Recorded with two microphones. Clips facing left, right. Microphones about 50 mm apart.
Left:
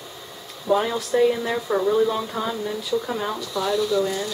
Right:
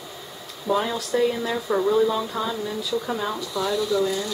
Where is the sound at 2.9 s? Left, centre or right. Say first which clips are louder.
Left 1 dB; centre.